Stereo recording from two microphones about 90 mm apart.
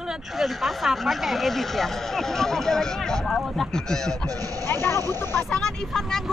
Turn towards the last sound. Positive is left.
turn(degrees=5)  # may be behind; listen again after turning